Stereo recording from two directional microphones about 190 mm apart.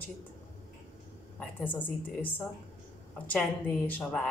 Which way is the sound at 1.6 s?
10° left (ahead or behind).